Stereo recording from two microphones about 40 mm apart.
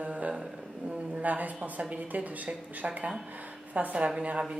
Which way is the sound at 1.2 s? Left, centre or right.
Right.